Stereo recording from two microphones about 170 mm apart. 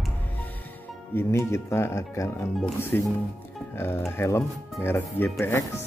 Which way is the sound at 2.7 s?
15° left (ahead or behind).